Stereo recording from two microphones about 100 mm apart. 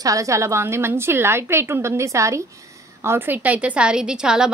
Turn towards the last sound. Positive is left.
turn(degrees=-10)  # may be behind; listen again after turning